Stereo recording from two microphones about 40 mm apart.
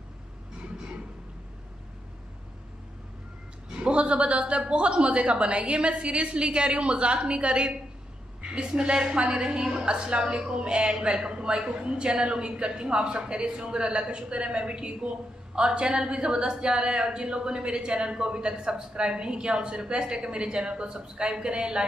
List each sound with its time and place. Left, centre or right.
3.7 s a woman's voice: right